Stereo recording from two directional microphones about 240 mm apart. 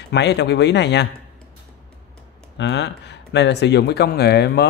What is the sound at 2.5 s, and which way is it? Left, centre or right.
Speech, left.